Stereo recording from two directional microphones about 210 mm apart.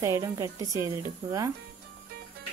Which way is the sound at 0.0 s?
15° right (ahead or behind).